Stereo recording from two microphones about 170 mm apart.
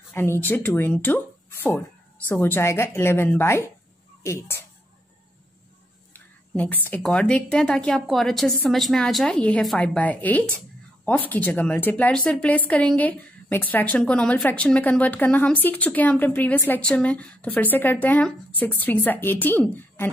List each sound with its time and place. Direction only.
0.1 s speech: 15° left (ahead or behind)
6.1 s speech: 10° left (ahead or behind)